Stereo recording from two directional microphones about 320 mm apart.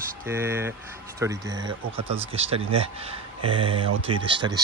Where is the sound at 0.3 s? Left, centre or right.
Centre.